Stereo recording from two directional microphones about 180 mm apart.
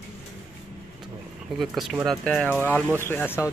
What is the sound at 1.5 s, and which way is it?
Speech, centre (ahead or behind).